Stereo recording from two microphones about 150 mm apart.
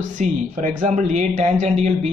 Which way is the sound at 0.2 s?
55° right (ahead or behind).